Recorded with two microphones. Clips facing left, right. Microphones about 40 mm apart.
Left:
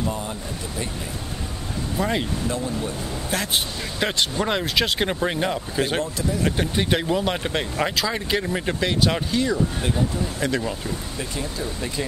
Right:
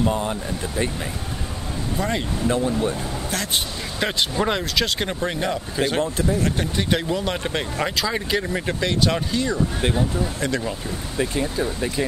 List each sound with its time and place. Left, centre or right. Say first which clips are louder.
0.0 s speech: right 5 dB; right
2.0 s speech: left 1 dB; centre
2.4 s speech: right 5 dB; right
4.0 s speech: right 1 dB; centre
4.7 s speech: left 1 dB; centre
11.1 s speech: right 6 dB; right